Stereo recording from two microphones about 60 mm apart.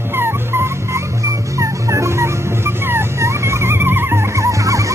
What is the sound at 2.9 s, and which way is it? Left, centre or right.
Music, right.